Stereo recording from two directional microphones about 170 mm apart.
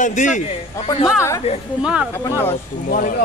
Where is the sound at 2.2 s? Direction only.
15° left (ahead or behind).